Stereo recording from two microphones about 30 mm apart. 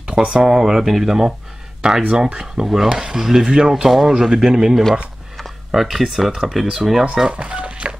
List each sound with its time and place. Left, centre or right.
0.0 s speech: right
0.5 s speech: centre
1.8 s speech: right
2.3 s speech: centre
5.7 s speech: centre
6.7 s speech: centre
7.2 s telephone dialing: right